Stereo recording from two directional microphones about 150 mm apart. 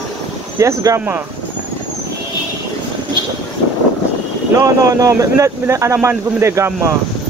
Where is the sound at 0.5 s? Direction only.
20° right (ahead or behind).